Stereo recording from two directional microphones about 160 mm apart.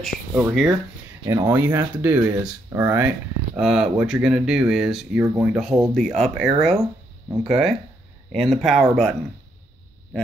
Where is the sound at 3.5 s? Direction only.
5° right (ahead or behind).